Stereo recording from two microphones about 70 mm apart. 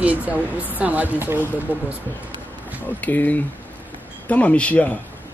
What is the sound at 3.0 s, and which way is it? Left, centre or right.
Speech, left.